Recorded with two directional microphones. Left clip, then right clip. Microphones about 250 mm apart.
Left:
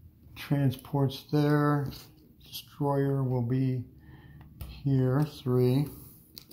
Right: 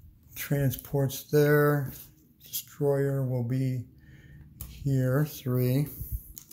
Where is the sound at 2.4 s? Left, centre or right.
Right.